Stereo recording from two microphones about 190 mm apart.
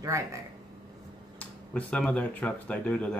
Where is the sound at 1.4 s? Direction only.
5° left (ahead or behind).